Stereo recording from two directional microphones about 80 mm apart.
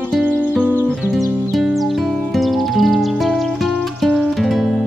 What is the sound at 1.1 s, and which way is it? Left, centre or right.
Music, centre.